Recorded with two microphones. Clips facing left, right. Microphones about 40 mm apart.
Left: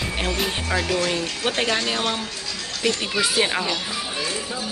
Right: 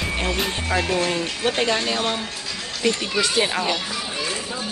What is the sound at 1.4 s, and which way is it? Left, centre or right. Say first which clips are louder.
Speech: right 2 dB; centre.